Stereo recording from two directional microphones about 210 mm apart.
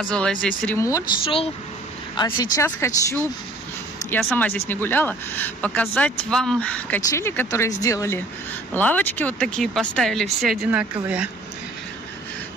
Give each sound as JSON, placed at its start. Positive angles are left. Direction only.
{"t": 0.0, "sound": "speech", "side_deg": 5}
{"t": 1.2, "sound": "speech", "side_deg": 25}